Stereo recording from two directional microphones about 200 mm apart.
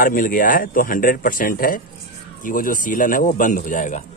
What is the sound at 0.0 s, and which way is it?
Speech, 45° left (ahead or behind).